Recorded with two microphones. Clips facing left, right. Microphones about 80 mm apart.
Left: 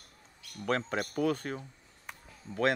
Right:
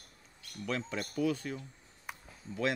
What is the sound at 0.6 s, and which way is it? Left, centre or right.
Speech, left.